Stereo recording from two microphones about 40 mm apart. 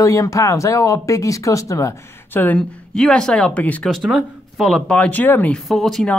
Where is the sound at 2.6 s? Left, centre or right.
Centre.